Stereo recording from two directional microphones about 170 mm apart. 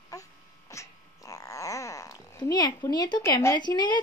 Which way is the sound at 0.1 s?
20° left (ahead or behind).